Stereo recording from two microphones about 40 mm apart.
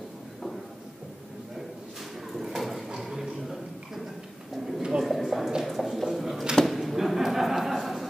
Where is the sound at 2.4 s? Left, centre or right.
Centre.